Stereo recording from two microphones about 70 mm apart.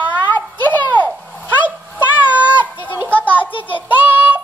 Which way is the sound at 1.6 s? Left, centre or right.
Right.